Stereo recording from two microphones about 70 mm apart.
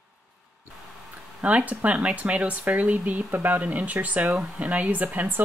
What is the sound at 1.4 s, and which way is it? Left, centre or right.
Speech, right.